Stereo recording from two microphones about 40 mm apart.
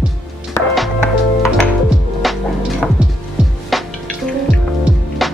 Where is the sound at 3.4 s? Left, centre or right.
Right.